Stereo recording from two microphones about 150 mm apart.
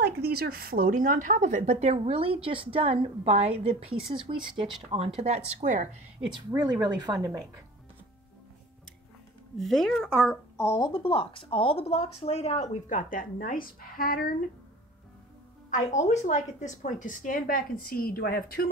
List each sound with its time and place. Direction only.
0.0 s speech: 90° right; by 5.9 s 50° right (ahead or behind)
6.3 s a woman's voice: 25° right (ahead or behind)
9.6 s speech: centre (ahead or behind)
10.6 s speech: 25° left (ahead or behind)
10.9 s speech: 35° left (ahead or behind); by 14.3 s 75° left (ahead or behind)
15.7 s a woman's voice: 50° left (ahead or behind); by 18.7 s 90° left